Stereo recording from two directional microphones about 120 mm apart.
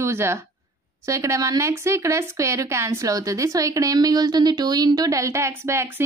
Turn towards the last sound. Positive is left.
turn(degrees=-20)  # may be behind; listen again after turning